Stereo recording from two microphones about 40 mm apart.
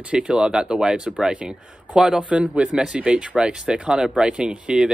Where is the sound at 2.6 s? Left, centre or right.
Centre.